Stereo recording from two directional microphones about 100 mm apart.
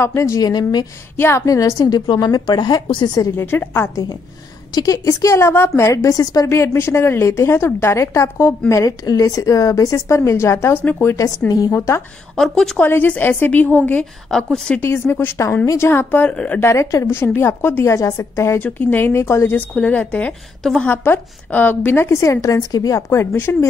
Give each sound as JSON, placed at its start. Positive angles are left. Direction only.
{"t": 0.0, "sound": "a woman's voice", "side_deg": 30}
{"t": 1.1, "sound": "a woman's voice", "side_deg": 25}
{"t": 3.3, "sound": "speech", "side_deg": 25}
{"t": 4.7, "sound": "speech", "side_deg": 35}
{"t": 11.1, "sound": "a woman's voice", "side_deg": 35}
{"t": 12.4, "sound": "a woman's voice", "side_deg": 5}
{"t": 12.8, "sound": "a woman's voice", "side_deg": 20}
{"t": 14.3, "sound": "a woman's voice", "side_deg": 5}
{"t": 14.8, "sound": "speech", "side_deg": 20}
{"t": 16.6, "sound": "speech", "side_deg": 30}
{"t": 17.9, "sound": "speech", "side_deg": 30}
{"t": 18.6, "sound": "speech", "side_deg": 15}
{"t": 19.7, "sound": "a woman's voice", "side_deg": 15}
{"t": 20.9, "sound": "speech", "side_deg": 20}